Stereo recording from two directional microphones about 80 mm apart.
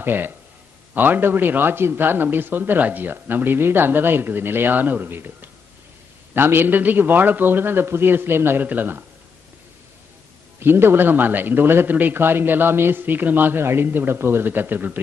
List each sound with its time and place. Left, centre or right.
0.0 s a man's voice: right
10.6 s a man's voice: right